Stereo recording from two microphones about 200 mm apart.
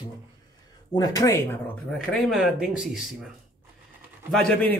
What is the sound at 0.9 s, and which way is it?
Speech, 15° left (ahead or behind).